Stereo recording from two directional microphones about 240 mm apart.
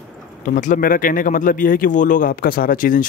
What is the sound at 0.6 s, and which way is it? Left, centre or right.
Speech, left.